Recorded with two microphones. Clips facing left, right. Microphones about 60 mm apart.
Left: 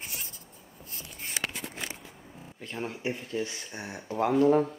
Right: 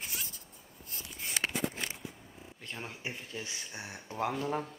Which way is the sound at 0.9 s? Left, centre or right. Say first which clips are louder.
Even; left.